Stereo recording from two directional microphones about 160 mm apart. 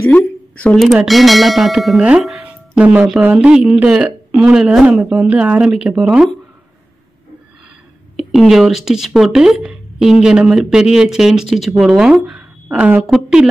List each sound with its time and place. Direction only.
0.0 s speech: 10° left (ahead or behind)
8.2 s speech: centre (ahead or behind)